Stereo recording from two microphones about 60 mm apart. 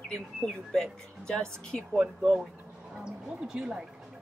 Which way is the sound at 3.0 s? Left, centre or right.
Centre.